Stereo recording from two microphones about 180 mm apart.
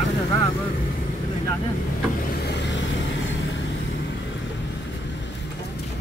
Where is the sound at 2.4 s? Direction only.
75° left (ahead or behind).